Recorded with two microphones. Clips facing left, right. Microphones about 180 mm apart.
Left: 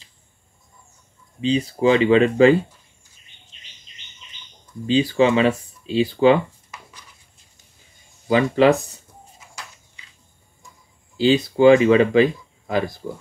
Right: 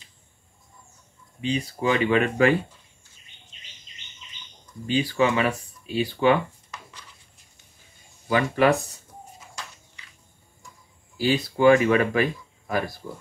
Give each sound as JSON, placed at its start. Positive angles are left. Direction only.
{"t": 1.4, "sound": "speech", "side_deg": 25}
{"t": 4.8, "sound": "speech", "side_deg": 25}
{"t": 8.3, "sound": "speech", "side_deg": 25}
{"t": 11.1, "sound": "speech", "side_deg": 25}